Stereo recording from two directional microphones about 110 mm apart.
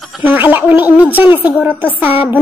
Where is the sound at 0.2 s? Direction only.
20° right (ahead or behind).